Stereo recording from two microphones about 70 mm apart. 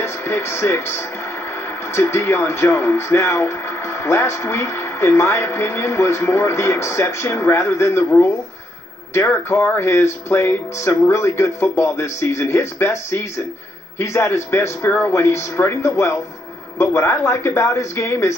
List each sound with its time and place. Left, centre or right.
0.0 s speech: left